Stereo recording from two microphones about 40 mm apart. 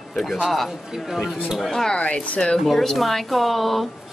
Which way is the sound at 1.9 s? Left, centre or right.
Left.